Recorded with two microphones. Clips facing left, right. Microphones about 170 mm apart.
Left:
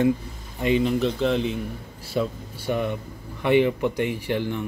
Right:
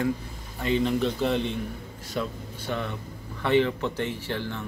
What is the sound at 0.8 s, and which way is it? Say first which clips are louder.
Speech: left 3 dB; centre (ahead or behind).